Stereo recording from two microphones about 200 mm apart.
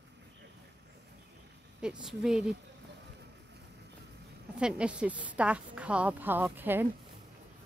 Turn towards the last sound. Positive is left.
turn(degrees=-10)  # may be behind; listen again after turning